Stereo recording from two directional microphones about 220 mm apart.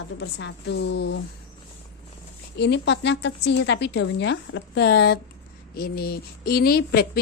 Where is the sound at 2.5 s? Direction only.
50° left (ahead or behind).